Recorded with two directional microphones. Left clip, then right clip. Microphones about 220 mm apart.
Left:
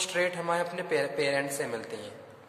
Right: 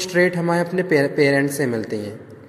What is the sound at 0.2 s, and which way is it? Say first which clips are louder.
A man's voice: right 11 dB; 30° right (ahead or behind).